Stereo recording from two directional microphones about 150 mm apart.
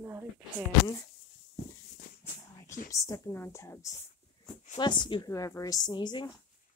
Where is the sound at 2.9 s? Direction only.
20° left (ahead or behind).